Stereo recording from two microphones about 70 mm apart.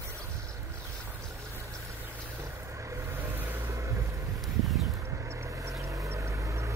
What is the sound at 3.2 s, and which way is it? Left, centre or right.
Vehicle, right.